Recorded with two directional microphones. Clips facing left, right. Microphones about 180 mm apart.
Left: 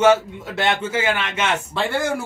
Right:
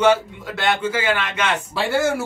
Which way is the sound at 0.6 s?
25° left (ahead or behind).